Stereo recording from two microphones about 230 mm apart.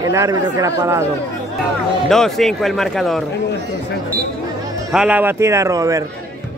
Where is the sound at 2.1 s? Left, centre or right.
Centre.